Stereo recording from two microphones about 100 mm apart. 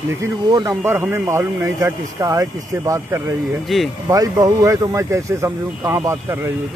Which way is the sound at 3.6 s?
Centre (ahead or behind).